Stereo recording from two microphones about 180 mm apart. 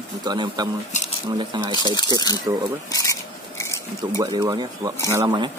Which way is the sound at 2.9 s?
20° left (ahead or behind).